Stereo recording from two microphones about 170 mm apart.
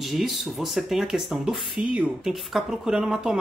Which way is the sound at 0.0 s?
Centre (ahead or behind).